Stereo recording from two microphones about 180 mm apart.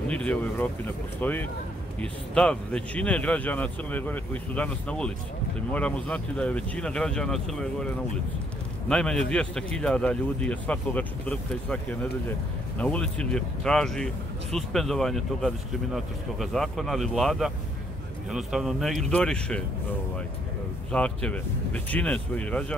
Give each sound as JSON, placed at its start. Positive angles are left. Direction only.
{"t": 0.1, "sound": "a man's voice", "side_deg": 5}
{"t": 20.9, "sound": "a man's voice", "side_deg": 5}